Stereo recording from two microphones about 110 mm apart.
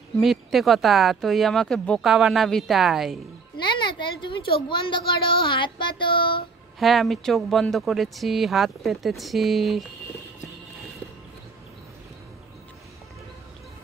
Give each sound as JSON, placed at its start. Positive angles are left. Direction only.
{"t": 0.2, "sound": "speech", "side_deg": 0}
{"t": 3.6, "sound": "a woman's voice", "side_deg": 45}
{"t": 5.5, "sound": "a sound", "side_deg": 45}
{"t": 6.8, "sound": "speech", "side_deg": 0}